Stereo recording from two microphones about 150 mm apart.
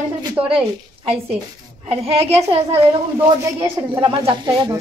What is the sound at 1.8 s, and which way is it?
Speech, 40° right (ahead or behind).